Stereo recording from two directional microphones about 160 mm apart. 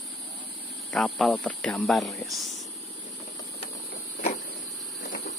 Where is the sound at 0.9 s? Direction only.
5° left (ahead or behind).